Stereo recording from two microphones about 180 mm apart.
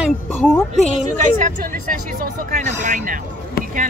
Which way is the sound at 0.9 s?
45° right (ahead or behind).